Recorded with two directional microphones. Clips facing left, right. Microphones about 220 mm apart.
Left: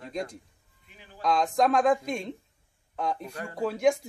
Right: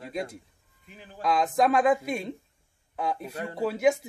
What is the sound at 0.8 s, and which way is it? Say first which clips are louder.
Speech: right 5 dB; 40° right (ahead or behind).